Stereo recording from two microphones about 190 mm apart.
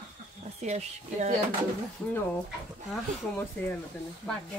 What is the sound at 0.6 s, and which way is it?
Speech, 35° right (ahead or behind).